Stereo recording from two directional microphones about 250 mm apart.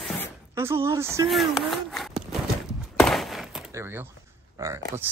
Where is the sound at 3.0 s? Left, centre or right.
Centre.